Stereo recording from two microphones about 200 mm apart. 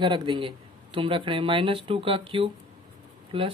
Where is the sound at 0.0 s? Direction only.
25° right (ahead or behind).